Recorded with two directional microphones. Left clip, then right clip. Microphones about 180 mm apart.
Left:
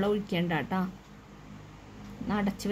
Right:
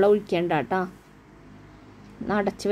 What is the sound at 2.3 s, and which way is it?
Speech, 15° right (ahead or behind).